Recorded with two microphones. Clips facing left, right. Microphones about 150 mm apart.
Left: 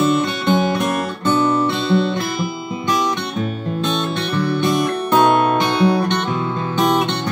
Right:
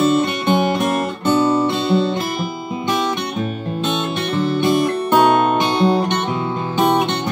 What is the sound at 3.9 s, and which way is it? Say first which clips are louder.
Music: right 2 dB; 20° right (ahead or behind).